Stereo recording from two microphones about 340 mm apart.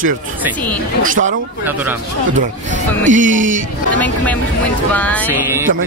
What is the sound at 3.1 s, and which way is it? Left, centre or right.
Music, right.